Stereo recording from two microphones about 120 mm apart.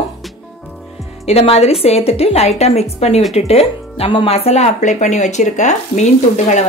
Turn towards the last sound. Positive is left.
turn(degrees=80)